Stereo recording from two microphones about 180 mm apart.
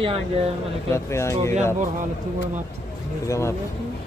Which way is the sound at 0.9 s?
15° left (ahead or behind).